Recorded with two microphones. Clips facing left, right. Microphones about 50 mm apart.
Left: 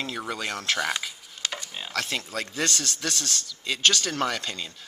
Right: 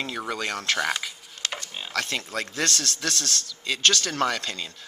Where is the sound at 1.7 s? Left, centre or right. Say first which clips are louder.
Right 1 dB; centre.